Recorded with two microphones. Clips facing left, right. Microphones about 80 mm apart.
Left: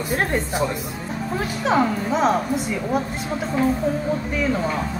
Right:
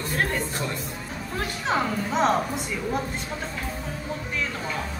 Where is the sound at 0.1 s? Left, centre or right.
Left.